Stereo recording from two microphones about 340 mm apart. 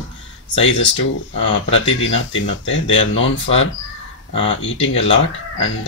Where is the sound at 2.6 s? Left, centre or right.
Left.